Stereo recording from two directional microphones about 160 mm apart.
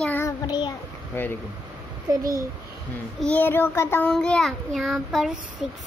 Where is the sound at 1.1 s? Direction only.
15° left (ahead or behind).